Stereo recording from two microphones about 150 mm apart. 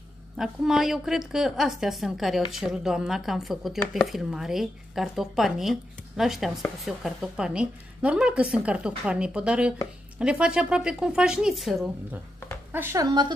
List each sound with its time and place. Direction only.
0.4 s speech: centre (ahead or behind)
12.7 s speech: 20° right (ahead or behind)